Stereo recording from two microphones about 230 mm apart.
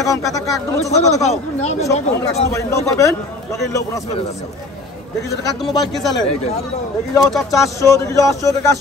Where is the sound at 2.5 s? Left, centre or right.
Centre.